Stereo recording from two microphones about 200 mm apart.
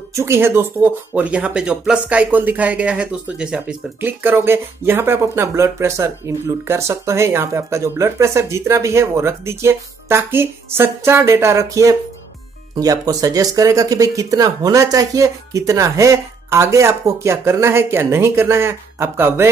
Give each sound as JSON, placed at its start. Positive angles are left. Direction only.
{"t": 0.1, "sound": "speech", "side_deg": -15}